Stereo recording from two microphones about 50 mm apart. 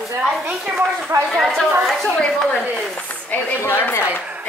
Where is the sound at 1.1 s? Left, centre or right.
Right.